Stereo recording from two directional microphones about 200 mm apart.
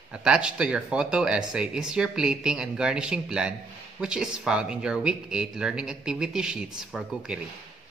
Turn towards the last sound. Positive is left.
turn(degrees=-5)  # may be behind; listen again after turning